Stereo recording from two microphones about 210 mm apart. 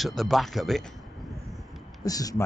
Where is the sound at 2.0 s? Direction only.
15° left (ahead or behind).